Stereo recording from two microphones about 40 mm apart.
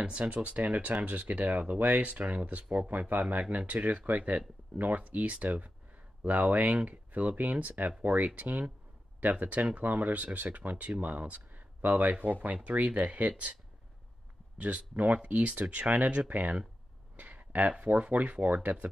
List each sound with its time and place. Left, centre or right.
0.0 s speech: right
14.6 s speech: right
15.6 s speech: right
17.2 s speech: right